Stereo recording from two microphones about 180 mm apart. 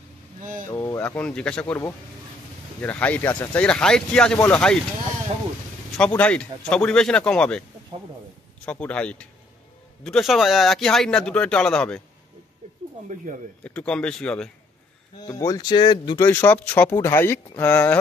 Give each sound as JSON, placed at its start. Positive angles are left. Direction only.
{"t": 0.4, "sound": "a sound", "side_deg": -45}
{"t": 0.7, "sound": "speech", "side_deg": 15}
{"t": 2.8, "sound": "speech", "side_deg": 10}
{"t": 5.9, "sound": "speech", "side_deg": 5}
{"t": 8.6, "sound": "speech", "side_deg": 5}
{"t": 13.1, "sound": "speech", "side_deg": -45}
{"t": 13.7, "sound": "speech", "side_deg": 5}
{"t": 15.2, "sound": "speech", "side_deg": 20}
{"t": 16.3, "sound": "speech", "side_deg": 10}